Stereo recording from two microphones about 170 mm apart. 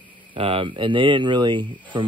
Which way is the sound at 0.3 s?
35° right (ahead or behind).